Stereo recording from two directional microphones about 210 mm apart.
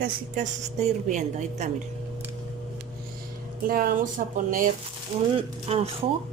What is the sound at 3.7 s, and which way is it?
Speech, 45° right (ahead or behind).